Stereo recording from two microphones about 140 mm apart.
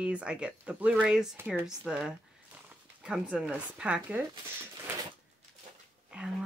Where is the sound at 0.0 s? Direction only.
5° right (ahead or behind).